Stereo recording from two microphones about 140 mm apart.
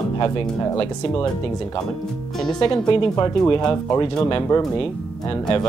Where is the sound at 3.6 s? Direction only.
30° left (ahead or behind).